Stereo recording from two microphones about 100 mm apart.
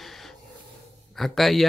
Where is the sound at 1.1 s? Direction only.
Centre (ahead or behind).